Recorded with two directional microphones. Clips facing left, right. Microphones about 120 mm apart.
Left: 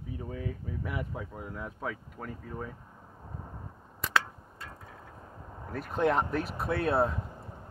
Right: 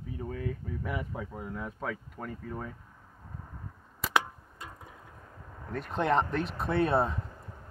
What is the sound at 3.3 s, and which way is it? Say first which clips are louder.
Vehicle: left 2 dB; 20° left (ahead or behind).